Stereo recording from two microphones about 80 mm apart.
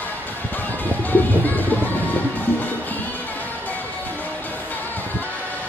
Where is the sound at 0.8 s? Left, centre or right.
Left.